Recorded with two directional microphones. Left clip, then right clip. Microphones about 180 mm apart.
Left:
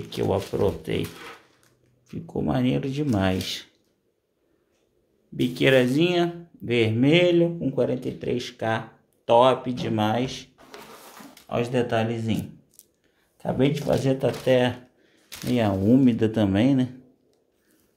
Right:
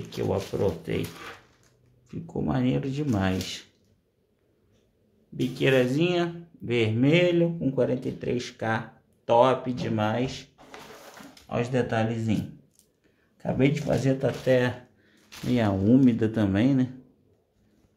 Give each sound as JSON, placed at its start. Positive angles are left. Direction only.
{"t": 0.1, "sound": "speech", "side_deg": 20}
{"t": 2.0, "sound": "speech", "side_deg": 15}
{"t": 5.3, "sound": "speech", "side_deg": 30}
{"t": 13.4, "sound": "speech", "side_deg": 10}